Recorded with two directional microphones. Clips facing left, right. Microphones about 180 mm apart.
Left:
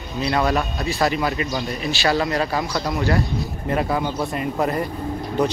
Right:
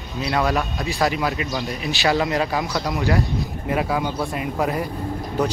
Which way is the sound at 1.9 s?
15° right (ahead or behind).